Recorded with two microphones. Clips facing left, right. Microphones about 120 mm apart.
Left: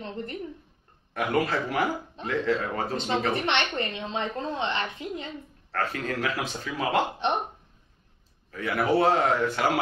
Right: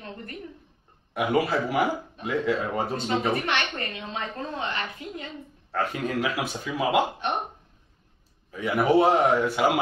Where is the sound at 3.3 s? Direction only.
25° left (ahead or behind).